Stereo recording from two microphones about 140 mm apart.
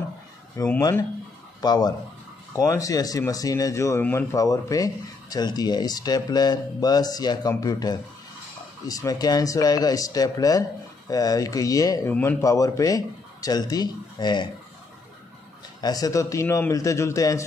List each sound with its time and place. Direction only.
0.6 s speech: 25° left (ahead or behind)
15.8 s speech: 25° left (ahead or behind)